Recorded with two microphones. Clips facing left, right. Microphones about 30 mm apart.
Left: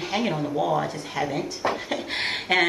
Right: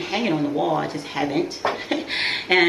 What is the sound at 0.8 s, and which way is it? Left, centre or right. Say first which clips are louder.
Speech: right 3 dB; right.